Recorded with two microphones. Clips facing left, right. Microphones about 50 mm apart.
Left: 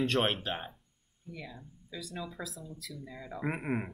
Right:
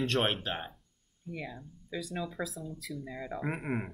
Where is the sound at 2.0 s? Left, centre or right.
Centre.